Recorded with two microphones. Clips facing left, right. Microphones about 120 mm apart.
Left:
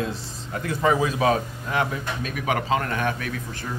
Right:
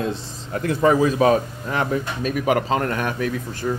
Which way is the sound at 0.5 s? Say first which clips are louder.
Right 4 dB; 45° right (ahead or behind).